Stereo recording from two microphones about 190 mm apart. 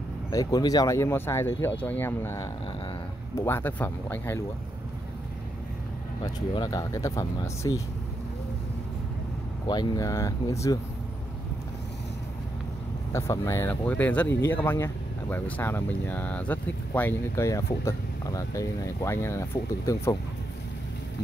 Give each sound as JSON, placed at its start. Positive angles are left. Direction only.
{"t": 0.3, "sound": "speech", "side_deg": 20}
{"t": 6.2, "sound": "speech", "side_deg": 20}
{"t": 9.7, "sound": "speech", "side_deg": 20}
{"t": 13.1, "sound": "speech", "side_deg": 15}